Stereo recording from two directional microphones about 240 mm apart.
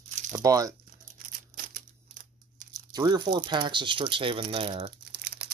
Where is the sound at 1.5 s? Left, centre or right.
Right.